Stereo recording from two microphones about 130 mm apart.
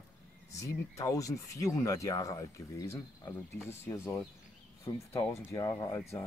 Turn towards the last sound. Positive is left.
turn(degrees=25)  # may be behind; listen again after turning